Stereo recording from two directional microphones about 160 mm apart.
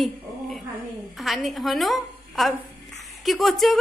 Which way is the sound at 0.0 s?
Centre (ahead or behind).